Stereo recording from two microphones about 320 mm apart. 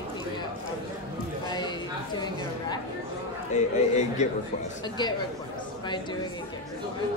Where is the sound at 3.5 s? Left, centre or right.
Left.